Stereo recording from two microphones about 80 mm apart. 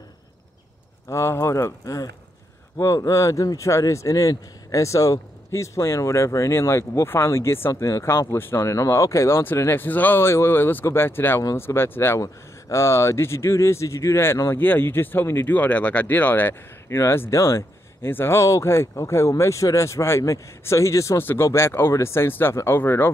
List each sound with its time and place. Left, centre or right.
1.0 s speech: left
9.4 s speech: left
21.2 s speech: left